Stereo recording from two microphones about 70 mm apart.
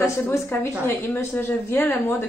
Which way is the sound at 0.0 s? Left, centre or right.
Left.